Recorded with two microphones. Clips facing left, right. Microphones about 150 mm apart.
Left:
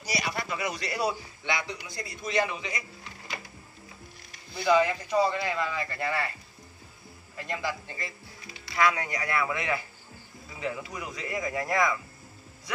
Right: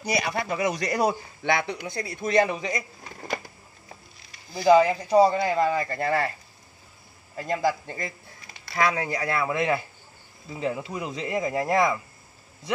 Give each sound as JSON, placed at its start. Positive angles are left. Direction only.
{"t": 0.0, "sound": "a man's voice", "side_deg": -55}
{"t": 4.6, "sound": "a man's voice", "side_deg": -40}
{"t": 7.3, "sound": "a man's voice", "side_deg": -40}